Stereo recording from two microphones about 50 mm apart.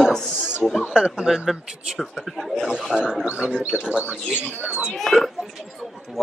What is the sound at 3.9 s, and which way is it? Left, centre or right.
Speech, right.